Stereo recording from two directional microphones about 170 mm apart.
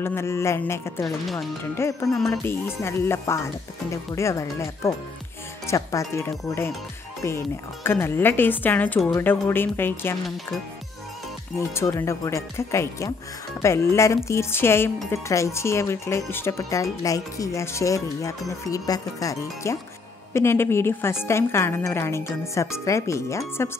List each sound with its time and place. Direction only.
0.0 s speech: 15° left (ahead or behind)
11.5 s speech: 20° left (ahead or behind)